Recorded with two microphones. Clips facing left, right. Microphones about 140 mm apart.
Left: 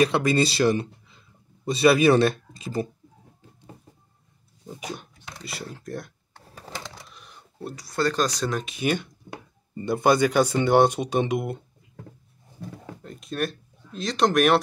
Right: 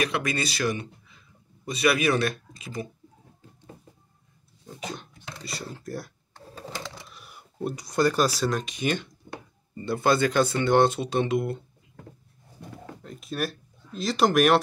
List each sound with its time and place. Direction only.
0.0 s speech: 30° left (ahead or behind)
4.6 s speech: 10° left (ahead or behind)
5.4 s speech: centre (ahead or behind)
7.2 s speech: 10° right (ahead or behind); by 11.5 s 15° left (ahead or behind)
13.0 s speech: centre (ahead or behind)